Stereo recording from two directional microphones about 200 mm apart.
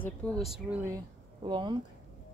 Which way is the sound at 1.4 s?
25° right (ahead or behind).